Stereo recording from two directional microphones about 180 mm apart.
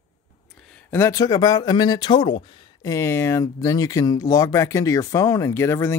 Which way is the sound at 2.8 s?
15° left (ahead or behind).